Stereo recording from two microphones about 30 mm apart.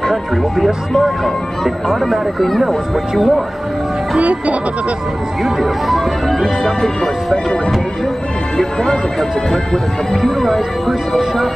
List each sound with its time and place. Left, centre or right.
0.9 s speech: centre
4.2 s music: right
5.4 s speech: centre
6.2 s speech: centre
10.2 s speech: centre